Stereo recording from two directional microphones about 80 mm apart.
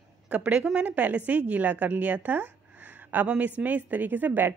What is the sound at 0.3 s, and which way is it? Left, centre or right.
A woman's voice, centre.